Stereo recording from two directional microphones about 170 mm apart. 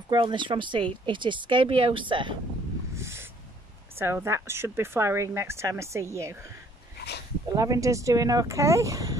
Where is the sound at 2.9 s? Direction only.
15° right (ahead or behind).